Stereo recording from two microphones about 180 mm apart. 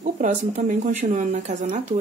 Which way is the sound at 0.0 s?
45° right (ahead or behind).